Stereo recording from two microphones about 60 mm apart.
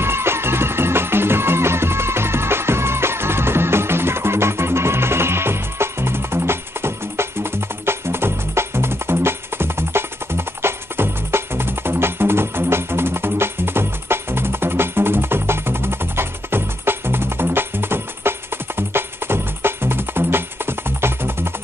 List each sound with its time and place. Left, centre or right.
0.0 s music: right